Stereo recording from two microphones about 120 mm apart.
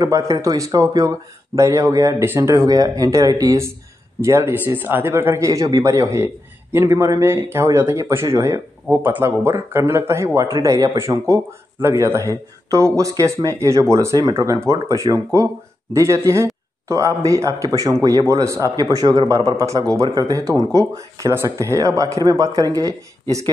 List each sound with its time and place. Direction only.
0.0 s speech: 25° right (ahead or behind)